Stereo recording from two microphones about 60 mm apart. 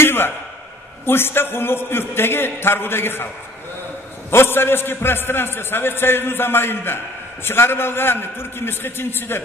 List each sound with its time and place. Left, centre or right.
0.0 s a sound: left
1.0 s a man's voice: left
4.3 s a man's voice: left